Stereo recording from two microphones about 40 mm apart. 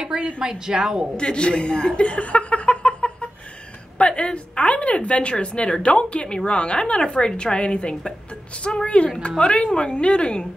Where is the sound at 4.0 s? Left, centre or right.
Left.